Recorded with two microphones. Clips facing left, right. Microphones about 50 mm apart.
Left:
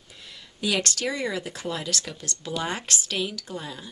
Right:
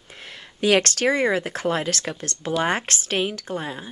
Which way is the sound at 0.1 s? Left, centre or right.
Right.